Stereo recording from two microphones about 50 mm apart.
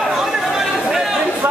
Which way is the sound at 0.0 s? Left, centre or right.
Centre.